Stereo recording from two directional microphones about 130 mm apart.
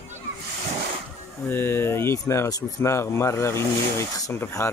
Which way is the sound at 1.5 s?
15° left (ahead or behind).